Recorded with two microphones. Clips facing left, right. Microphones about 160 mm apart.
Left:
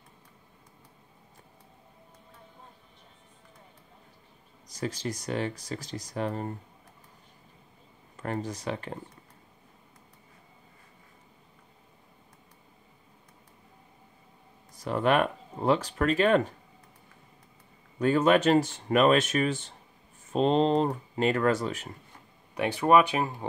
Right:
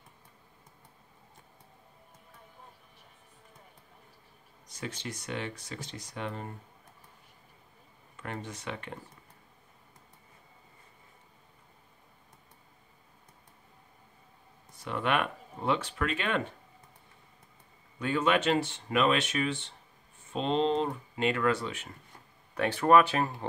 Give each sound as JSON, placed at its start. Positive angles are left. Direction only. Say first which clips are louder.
{"t": 4.6, "sound": "speech", "louder": "left 6 dB", "side_deg": 35}
{"t": 8.2, "sound": "speech", "louder": "left 7 dB", "side_deg": 40}
{"t": 14.8, "sound": "speech", "louder": "left 5 dB", "side_deg": 40}
{"t": 17.9, "sound": "speech", "louder": "left 5 dB", "side_deg": 40}
{"t": 22.5, "sound": "speech", "louder": "left 1 dB", "side_deg": 15}